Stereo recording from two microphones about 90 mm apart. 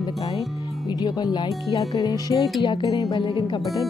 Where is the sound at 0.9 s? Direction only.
50° left (ahead or behind).